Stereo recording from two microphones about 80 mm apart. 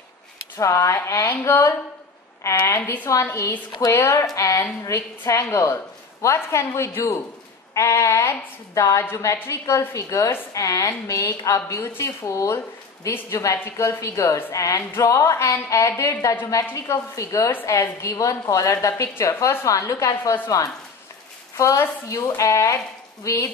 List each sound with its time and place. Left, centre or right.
0.6 s a woman's voice: left
21.5 s a woman's voice: left